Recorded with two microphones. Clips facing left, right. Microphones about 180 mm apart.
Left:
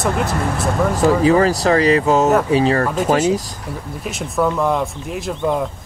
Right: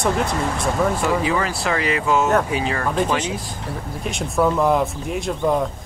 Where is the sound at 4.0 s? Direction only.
Centre (ahead or behind).